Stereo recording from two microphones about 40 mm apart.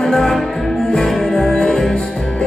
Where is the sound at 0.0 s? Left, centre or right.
Centre.